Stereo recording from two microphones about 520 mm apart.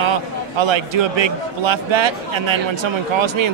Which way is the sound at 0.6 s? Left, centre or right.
Right.